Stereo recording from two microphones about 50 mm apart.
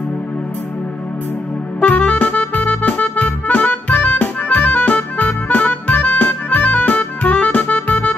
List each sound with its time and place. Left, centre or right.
1.8 s music: left